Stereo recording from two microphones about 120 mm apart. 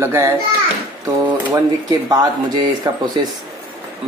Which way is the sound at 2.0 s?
35° right (ahead or behind).